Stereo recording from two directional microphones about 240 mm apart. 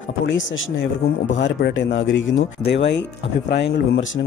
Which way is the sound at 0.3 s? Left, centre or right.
Left.